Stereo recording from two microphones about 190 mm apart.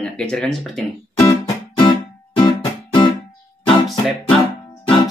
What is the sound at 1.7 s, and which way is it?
Music, 25° left (ahead or behind).